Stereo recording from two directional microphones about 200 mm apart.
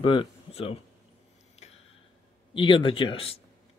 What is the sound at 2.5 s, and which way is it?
Speech, 25° left (ahead or behind).